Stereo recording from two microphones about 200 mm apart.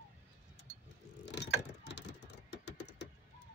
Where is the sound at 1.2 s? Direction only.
60° left (ahead or behind).